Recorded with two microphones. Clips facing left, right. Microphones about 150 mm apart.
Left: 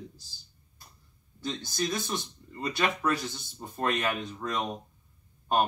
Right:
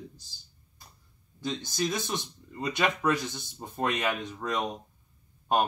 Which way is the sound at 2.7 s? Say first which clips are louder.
Right 2 dB; 15° right (ahead or behind).